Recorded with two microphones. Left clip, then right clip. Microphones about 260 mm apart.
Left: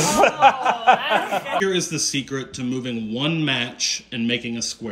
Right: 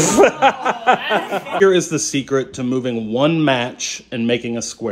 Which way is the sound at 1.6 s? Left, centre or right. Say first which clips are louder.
Right 8 dB; centre.